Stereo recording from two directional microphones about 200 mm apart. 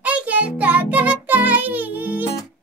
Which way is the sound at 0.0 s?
5° right (ahead or behind).